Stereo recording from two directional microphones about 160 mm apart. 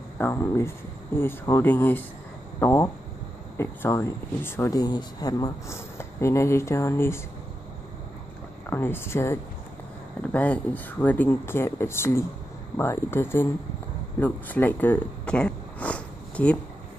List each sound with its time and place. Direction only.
0.2 s speech: 15° left (ahead or behind)
8.6 s speech: 10° left (ahead or behind)